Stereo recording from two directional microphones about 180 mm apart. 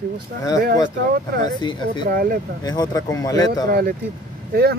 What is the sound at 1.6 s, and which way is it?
Speech, 25° left (ahead or behind).